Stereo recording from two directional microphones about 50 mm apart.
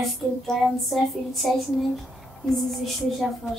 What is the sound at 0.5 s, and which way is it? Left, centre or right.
A woman's voice, centre.